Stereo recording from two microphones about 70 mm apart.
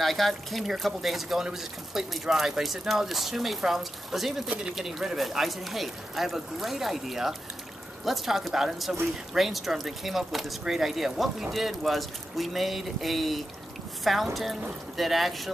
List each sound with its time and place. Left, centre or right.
0.0 s speech: centre